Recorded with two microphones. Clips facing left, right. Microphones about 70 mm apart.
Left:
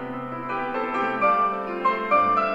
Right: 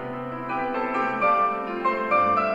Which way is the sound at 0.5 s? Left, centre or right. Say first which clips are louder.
Right 1 dB; right.